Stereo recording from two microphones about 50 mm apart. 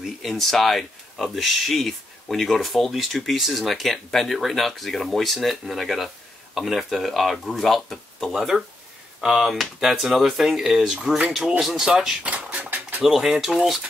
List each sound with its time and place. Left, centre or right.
0.0 s speech: centre
12.2 s bird: right
13.0 s speech: centre